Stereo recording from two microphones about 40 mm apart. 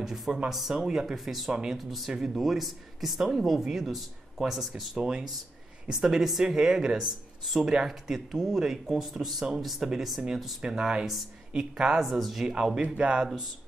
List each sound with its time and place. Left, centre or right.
0.0 s speech: centre
1.1 s speech: centre
1.5 s speech: centre
1.8 s speech: centre
4.9 s speech: centre
7.1 s speech: centre
12.0 s speech: centre; by 13.3 s right